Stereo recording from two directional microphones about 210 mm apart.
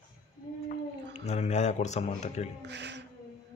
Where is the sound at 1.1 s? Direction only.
30° left (ahead or behind).